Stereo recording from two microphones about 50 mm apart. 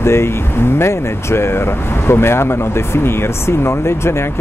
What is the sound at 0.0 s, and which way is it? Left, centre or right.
Speech, left.